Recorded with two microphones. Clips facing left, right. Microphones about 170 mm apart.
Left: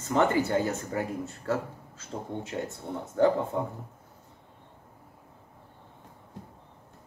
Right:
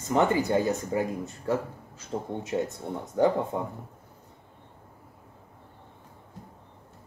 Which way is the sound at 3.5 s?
15° right (ahead or behind).